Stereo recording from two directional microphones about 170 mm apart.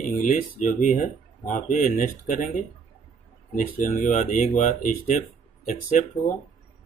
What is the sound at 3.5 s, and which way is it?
Speech, 50° left (ahead or behind).